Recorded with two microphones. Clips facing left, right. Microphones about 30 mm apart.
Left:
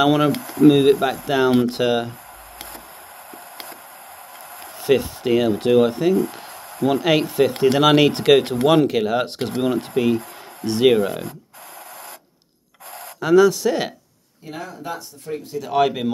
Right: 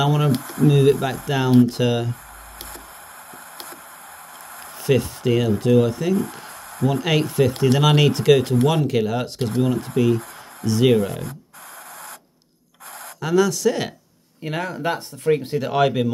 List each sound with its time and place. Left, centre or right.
0.7 s speech: left
4.8 s speech: centre; by 6.0 s left
6.0 s speech: centre
7.5 s speech: left
8.8 s speech: centre
9.4 s speech: left
10.9 s speech: centre
13.2 s speech: centre
14.5 s speech: right
15.7 s speech: centre